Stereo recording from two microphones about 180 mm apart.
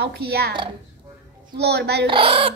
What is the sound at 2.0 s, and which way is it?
Speech, 30° right (ahead or behind).